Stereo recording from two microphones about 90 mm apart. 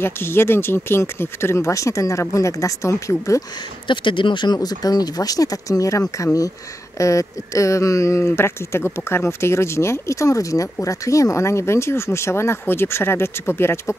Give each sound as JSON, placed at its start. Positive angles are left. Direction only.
{"t": 0.0, "sound": "speech", "side_deg": 25}
{"t": 3.8, "sound": "speech", "side_deg": 65}
{"t": 4.6, "sound": "speech", "side_deg": 45}